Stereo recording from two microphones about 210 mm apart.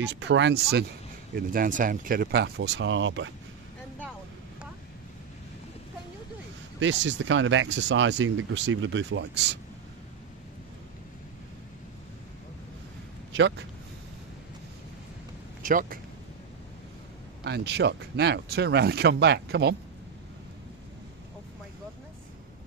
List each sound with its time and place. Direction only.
0.0 s speech: 55° right (ahead or behind)
6.8 s speech: 60° right (ahead or behind)
13.3 s speech: 60° right (ahead or behind)
15.6 s speech: 40° right (ahead or behind)
17.4 s speech: 55° right (ahead or behind)